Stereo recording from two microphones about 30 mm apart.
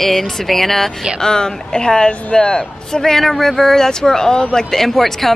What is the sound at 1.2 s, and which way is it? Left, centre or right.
Speech, left.